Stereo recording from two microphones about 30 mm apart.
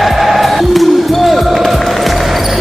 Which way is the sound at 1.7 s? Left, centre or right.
Centre.